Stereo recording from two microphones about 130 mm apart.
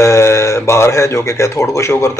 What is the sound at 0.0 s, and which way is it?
A man's voice, 20° left (ahead or behind).